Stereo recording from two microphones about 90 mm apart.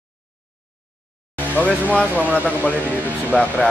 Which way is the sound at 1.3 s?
20° left (ahead or behind).